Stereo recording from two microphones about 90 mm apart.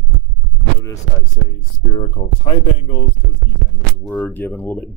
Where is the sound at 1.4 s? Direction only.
60° left (ahead or behind).